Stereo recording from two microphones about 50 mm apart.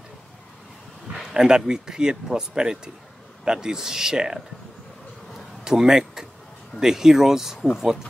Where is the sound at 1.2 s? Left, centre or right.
Centre.